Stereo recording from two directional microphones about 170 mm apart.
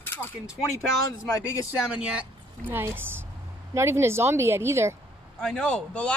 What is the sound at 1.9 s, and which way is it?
A woman's voice, 5° right (ahead or behind).